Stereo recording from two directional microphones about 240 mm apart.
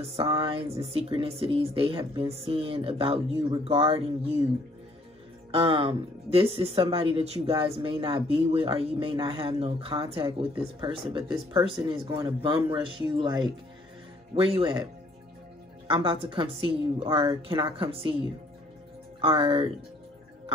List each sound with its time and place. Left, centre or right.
0.1 s speech: right
5.5 s speech: right
15.9 s speech: centre
19.2 s speech: right